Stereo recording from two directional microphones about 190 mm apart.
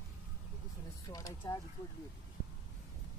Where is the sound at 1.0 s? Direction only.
20° left (ahead or behind).